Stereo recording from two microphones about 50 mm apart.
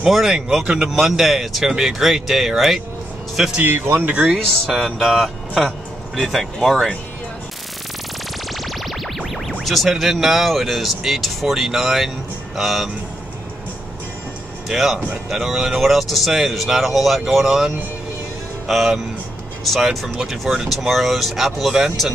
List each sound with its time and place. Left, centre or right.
0.0 s speech: centre
3.6 s speech: right
4.6 s speech: centre
8.5 s music: centre
9.6 s speech: centre
14.7 s speech: centre